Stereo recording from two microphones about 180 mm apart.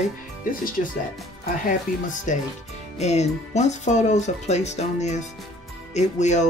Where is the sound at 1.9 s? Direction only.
45° left (ahead or behind).